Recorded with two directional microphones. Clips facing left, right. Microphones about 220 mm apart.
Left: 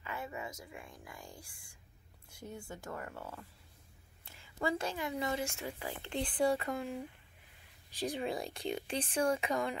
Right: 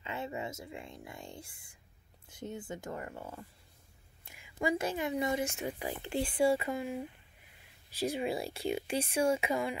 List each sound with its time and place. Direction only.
0.0 s speech: 25° right (ahead or behind); by 7.0 s 5° right (ahead or behind)
8.2 s speech: 5° right (ahead or behind)